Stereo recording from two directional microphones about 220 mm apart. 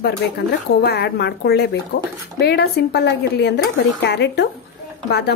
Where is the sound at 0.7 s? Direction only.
45° left (ahead or behind).